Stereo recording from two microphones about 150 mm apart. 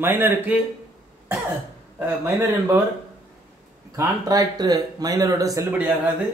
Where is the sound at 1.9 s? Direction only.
15° right (ahead or behind).